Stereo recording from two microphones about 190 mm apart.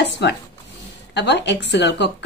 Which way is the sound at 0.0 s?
65° left (ahead or behind).